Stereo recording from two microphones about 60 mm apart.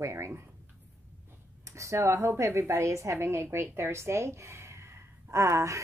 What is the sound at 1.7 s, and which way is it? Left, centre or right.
A woman's voice, right.